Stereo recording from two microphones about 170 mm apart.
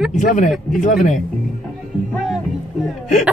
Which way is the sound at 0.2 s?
50° left (ahead or behind).